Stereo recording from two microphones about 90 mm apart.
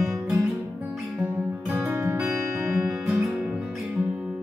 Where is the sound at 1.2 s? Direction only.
20° right (ahead or behind).